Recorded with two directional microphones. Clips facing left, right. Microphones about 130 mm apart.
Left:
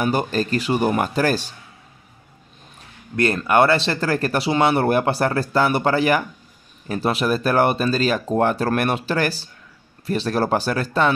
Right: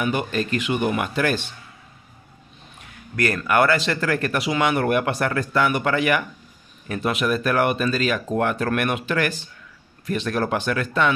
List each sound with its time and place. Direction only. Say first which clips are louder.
0.0 s speech: left 3 dB; 35° left (ahead or behind)
2.8 s speech: left 3 dB; 25° left (ahead or behind)